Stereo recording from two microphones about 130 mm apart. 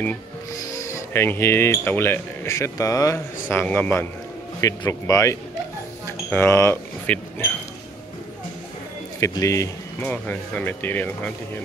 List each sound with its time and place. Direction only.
0.7 s speech: 25° left (ahead or behind)
4.6 s speech: 25° left (ahead or behind)
6.0 s a sound: 20° left (ahead or behind)
9.2 s speech: 25° left (ahead or behind)
10.0 s speech: 10° left (ahead or behind)